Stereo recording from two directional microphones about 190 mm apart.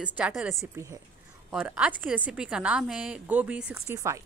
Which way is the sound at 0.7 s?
15° right (ahead or behind).